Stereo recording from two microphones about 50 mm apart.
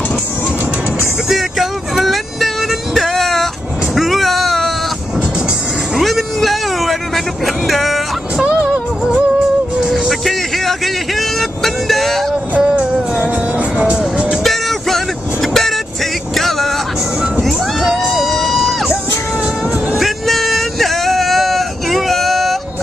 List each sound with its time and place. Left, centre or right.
1.3 s music: centre
3.9 s vehicle: centre
5.9 s vehicle: centre
7.4 s a sound: centre
9.8 s music: centre
10.2 s vehicle: centre
12.5 s music: right
13.2 s music: right
14.4 s music: centre
15.4 s vehicle: centre
17.5 s music: centre
20.0 s a sound: centre